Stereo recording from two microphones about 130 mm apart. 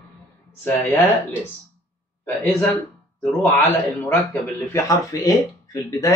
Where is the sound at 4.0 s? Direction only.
15° left (ahead or behind).